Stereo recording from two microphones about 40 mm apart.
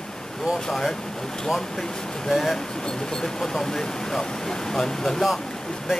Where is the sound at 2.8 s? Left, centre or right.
Centre.